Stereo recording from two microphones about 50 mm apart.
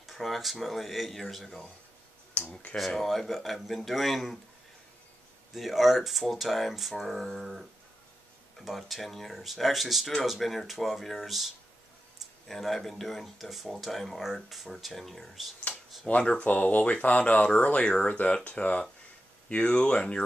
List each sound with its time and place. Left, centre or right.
0.0 s speech: centre
2.4 s speech: left
2.9 s speech: centre
5.5 s speech: centre
16.1 s speech: left